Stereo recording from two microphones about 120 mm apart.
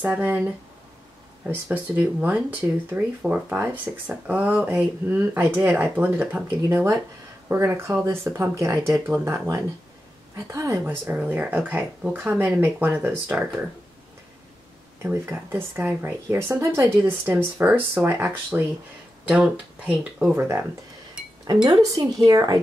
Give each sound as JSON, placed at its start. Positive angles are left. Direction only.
{"t": 0.0, "sound": "a woman's voice", "side_deg": -15}
{"t": 1.4, "sound": "a woman's voice", "side_deg": -15}
{"t": 11.1, "sound": "a woman's voice", "side_deg": -10}
{"t": 15.0, "sound": "a woman's voice", "side_deg": -20}
{"t": 21.6, "sound": "speech", "side_deg": -30}